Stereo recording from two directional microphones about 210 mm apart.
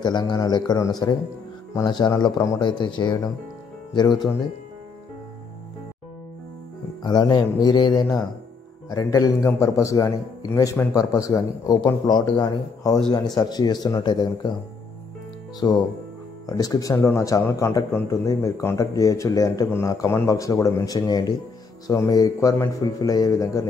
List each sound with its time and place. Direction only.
0.0 s speech: 20° left (ahead or behind)
7.0 s a man's voice: 20° left (ahead or behind)
15.6 s a man's voice: 15° left (ahead or behind)